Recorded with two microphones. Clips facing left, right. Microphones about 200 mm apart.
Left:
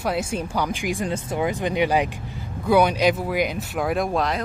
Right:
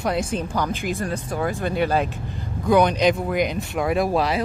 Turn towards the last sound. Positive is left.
turn(degrees=-5)  # may be behind; listen again after turning